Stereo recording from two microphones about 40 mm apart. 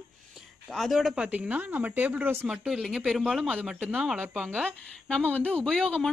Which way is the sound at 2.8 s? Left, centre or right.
Centre.